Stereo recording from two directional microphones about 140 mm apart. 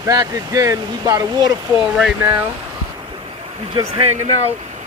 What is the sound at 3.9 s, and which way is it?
Speech, 50° right (ahead or behind).